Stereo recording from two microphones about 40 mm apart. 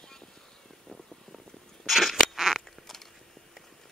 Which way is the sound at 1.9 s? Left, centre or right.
Centre.